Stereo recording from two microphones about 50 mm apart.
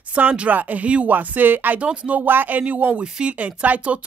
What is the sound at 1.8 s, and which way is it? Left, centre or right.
Speech, right.